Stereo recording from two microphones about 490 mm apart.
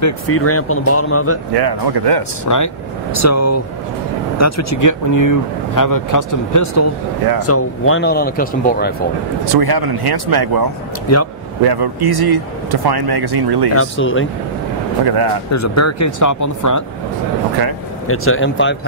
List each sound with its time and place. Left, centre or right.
0.0 s speech: left
1.5 s speech: right
2.4 s speech: left; by 8.9 s centre
9.5 s speech: right
11.1 s speech: left
11.6 s speech: right
13.7 s speech: left
15.0 s speech: right
15.5 s speech: left
18.0 s speech: left